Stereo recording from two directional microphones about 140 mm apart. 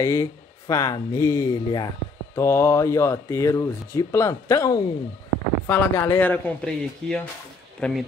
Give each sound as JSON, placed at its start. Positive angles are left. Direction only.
{"t": 0.0, "sound": "speech", "side_deg": 20}
{"t": 5.7, "sound": "speech", "side_deg": 15}